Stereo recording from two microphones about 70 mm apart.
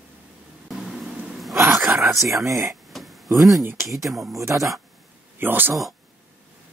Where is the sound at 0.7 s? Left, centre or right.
Centre.